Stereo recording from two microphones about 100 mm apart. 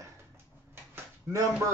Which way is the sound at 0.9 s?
25° right (ahead or behind).